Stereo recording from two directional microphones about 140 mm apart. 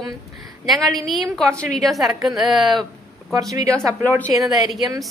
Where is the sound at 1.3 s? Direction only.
5° left (ahead or behind).